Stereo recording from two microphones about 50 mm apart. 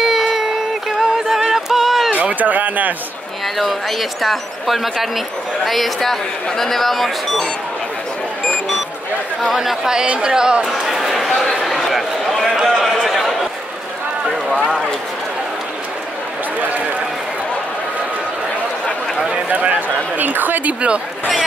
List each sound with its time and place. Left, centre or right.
0.0 s music: centre
2.1 s speech: right
3.5 s speech: centre
9.4 s speech: centre
10.0 s chatter: centre
12.5 s a sound: centre
19.5 s a man's voice: right